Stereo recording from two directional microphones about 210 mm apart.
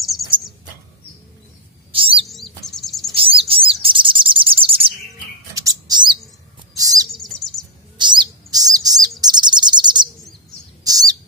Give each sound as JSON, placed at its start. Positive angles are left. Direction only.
{"t": 1.9, "sound": "bird", "side_deg": -25}
{"t": 2.2, "sound": "chirp", "side_deg": 0}
{"t": 3.2, "sound": "bird", "side_deg": -25}
{"t": 3.8, "sound": "chirp", "side_deg": -25}
{"t": 5.5, "sound": "bird", "side_deg": -15}
{"t": 7.2, "sound": "bird", "side_deg": 0}
{"t": 8.0, "sound": "bird", "side_deg": -20}